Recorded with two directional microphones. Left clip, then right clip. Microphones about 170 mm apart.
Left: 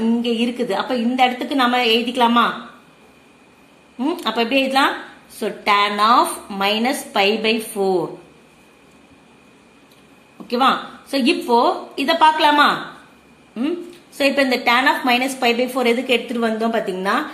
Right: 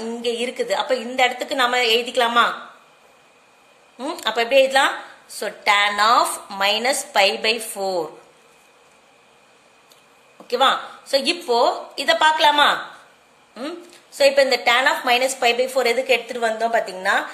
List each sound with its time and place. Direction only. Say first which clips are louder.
0.2 s a woman's voice: left 2 dB; 35° right (ahead or behind)
4.0 s a woman's voice: left 2 dB; 35° right (ahead or behind)
10.4 s a woman's voice: left 1 dB; 35° right (ahead or behind)